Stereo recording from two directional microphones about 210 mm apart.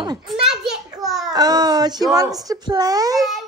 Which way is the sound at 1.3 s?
20° right (ahead or behind).